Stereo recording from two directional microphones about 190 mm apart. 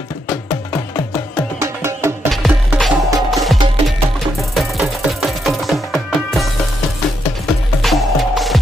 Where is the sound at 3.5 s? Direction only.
25° right (ahead or behind).